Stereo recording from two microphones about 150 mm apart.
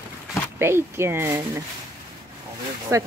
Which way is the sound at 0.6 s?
15° right (ahead or behind).